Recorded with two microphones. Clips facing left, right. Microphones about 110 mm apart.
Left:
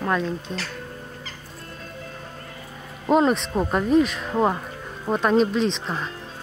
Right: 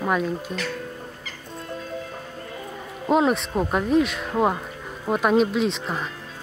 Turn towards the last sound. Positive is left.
turn(degrees=-5)  # may be behind; listen again after turning